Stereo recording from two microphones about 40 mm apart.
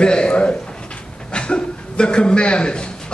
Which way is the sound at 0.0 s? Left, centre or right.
Left.